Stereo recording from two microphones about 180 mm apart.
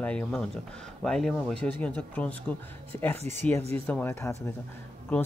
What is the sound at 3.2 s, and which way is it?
Speech, 40° right (ahead or behind).